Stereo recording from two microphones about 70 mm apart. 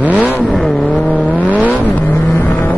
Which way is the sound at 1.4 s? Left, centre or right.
Right.